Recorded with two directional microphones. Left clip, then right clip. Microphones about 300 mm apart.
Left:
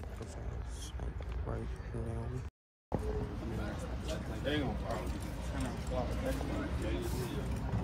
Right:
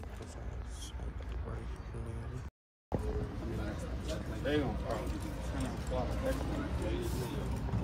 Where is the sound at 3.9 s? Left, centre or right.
Right.